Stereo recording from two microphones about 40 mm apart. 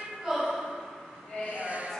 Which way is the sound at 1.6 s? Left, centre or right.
Right.